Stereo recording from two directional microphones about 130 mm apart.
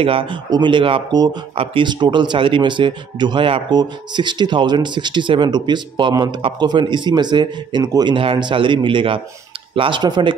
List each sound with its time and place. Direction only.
0.0 s speech: 45° right (ahead or behind)
1.5 s speech: 45° right (ahead or behind)